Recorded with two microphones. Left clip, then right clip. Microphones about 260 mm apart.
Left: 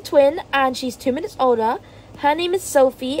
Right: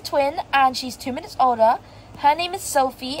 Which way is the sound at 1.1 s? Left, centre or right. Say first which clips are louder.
Left 2 dB; centre.